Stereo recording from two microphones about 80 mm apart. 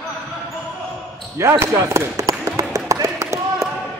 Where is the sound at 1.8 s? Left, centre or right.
Right.